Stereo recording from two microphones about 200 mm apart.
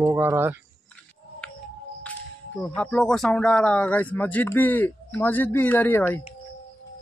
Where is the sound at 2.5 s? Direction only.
5° left (ahead or behind).